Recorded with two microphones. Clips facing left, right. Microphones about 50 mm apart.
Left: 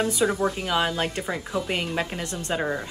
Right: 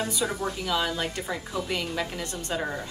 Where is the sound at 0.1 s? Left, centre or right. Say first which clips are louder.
Left 6 dB; left.